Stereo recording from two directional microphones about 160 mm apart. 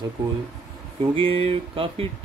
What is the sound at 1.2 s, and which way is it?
Speech, 35° right (ahead or behind).